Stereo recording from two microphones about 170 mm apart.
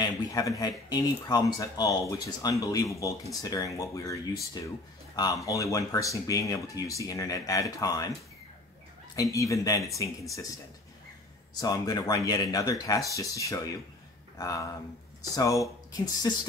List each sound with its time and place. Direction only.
0.0 s speech: 20° left (ahead or behind)
9.1 s speech: 20° left (ahead or behind)
11.6 s speech: 20° left (ahead or behind)